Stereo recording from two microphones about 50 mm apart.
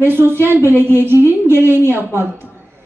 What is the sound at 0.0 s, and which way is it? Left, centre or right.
A woman's voice, right.